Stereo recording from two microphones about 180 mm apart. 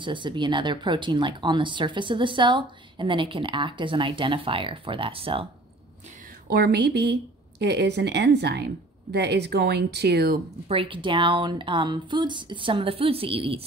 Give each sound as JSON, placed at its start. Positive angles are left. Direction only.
{"t": 0.0, "sound": "speech", "side_deg": -25}
{"t": 6.5, "sound": "speech", "side_deg": -65}
{"t": 10.7, "sound": "speech", "side_deg": -30}